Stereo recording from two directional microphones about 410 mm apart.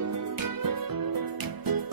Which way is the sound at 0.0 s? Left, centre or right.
Right.